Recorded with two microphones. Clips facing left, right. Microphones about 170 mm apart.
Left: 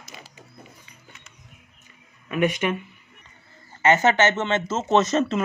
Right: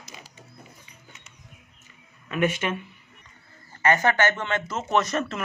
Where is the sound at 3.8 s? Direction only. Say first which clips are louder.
Left 3 dB; 20° left (ahead or behind).